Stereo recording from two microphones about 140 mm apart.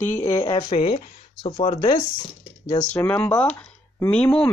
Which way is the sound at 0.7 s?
45° left (ahead or behind).